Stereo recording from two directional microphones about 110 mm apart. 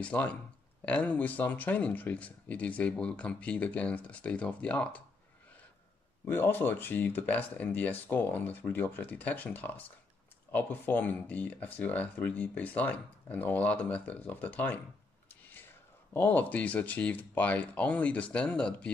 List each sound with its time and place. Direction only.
0.0 s speech: 10° left (ahead or behind)
6.2 s speech: 20° left (ahead or behind)
16.1 s speech: 15° left (ahead or behind)